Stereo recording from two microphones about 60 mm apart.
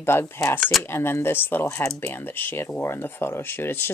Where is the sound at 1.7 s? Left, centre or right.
Left.